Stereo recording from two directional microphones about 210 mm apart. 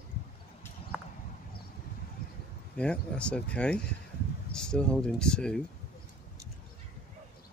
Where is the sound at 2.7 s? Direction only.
5° left (ahead or behind).